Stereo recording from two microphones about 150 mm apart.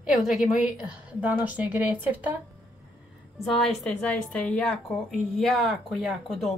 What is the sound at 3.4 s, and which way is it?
A woman's voice, centre (ahead or behind).